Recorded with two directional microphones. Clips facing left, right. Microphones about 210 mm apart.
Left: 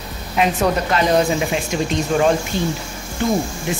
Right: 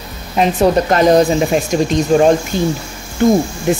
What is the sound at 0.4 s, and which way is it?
Speech, 40° right (ahead or behind).